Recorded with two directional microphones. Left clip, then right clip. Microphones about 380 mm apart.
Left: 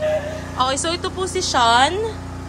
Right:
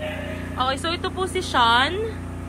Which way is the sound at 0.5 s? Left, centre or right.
Centre.